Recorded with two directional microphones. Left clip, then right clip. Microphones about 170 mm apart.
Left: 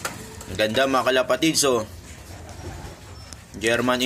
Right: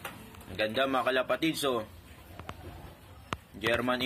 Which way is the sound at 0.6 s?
15° left (ahead or behind).